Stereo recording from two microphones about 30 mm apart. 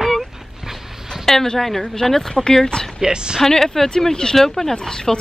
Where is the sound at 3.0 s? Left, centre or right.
Right.